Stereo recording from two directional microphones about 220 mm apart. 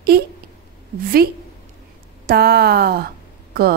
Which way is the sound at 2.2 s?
45° right (ahead or behind).